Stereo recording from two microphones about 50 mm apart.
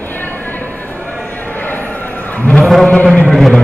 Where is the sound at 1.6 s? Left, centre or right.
Left.